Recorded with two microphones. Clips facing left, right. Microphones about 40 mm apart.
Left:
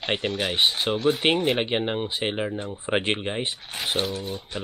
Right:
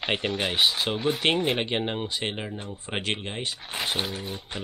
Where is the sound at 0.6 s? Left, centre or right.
Centre.